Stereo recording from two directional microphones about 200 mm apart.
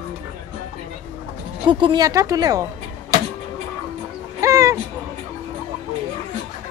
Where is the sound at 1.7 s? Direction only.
25° right (ahead or behind).